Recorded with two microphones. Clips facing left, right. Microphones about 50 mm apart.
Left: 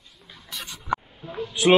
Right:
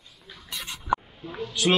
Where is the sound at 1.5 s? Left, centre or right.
Centre.